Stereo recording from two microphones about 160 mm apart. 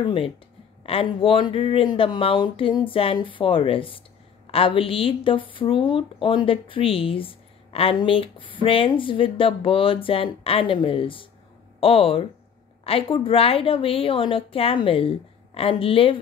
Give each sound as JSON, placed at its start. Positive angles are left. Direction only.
{"t": 0.0, "sound": "speech", "side_deg": 35}